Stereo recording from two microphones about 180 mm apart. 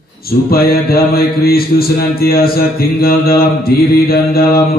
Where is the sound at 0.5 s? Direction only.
55° left (ahead or behind).